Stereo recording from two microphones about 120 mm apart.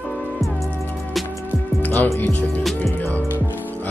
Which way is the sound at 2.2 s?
15° left (ahead or behind).